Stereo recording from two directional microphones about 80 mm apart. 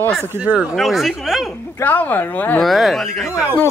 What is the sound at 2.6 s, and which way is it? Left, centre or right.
Speech, centre.